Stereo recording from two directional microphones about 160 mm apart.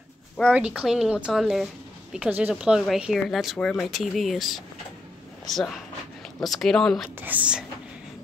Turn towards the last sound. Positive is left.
turn(degrees=-10)  # may be behind; listen again after turning